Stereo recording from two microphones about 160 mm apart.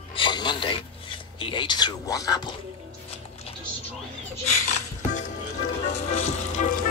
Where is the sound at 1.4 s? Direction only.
30° left (ahead or behind).